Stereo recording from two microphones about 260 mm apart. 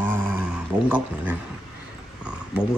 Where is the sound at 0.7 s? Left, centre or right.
Centre.